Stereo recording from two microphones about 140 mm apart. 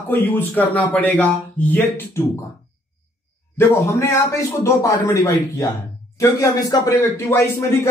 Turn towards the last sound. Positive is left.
turn(degrees=20)  # may be behind; listen again after turning